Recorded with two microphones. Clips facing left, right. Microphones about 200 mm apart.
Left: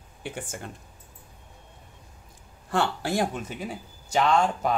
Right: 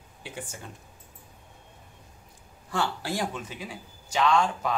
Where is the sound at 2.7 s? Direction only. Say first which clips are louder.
Left 4 dB; 55° left (ahead or behind).